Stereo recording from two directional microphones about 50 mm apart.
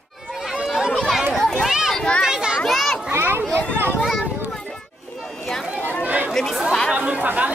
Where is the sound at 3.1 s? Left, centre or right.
Right.